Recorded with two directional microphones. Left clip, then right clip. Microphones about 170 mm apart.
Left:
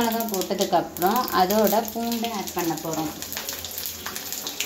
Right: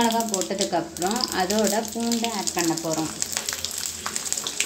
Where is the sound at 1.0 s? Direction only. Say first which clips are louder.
Left 4 dB; 5° right (ahead or behind).